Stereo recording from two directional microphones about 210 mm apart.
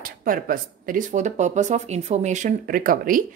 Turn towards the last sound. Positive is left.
turn(degrees=-40)  # may be behind; listen again after turning